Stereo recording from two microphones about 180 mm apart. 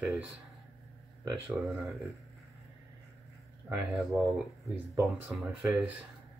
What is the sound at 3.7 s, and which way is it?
Speech, 5° right (ahead or behind).